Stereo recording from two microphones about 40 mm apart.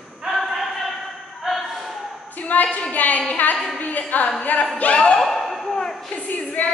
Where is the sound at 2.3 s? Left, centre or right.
Left.